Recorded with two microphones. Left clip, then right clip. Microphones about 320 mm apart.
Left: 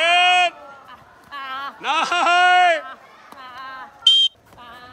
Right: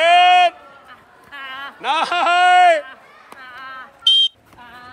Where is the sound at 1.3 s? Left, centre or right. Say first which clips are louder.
Left 2 dB; left.